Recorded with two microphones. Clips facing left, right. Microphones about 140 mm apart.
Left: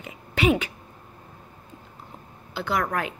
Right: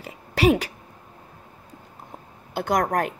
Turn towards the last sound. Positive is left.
turn(degrees=-45)  # may be behind; listen again after turning